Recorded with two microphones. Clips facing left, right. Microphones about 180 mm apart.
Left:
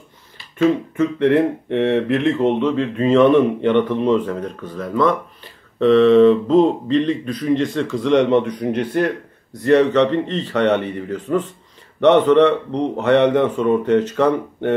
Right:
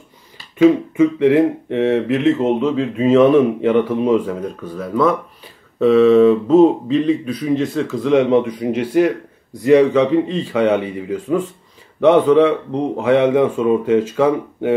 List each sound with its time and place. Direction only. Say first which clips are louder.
0.6 s a man's voice: right 5 dB; 10° right (ahead or behind)